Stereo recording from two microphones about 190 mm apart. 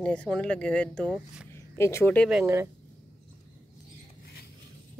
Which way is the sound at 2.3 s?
10° right (ahead or behind).